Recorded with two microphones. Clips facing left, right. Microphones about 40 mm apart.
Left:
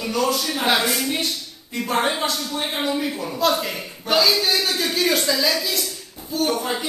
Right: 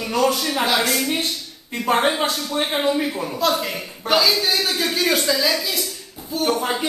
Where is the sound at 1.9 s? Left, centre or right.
Right.